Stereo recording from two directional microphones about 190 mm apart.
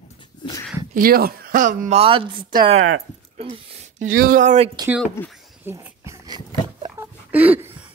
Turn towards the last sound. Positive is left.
turn(degrees=-10)  # may be behind; listen again after turning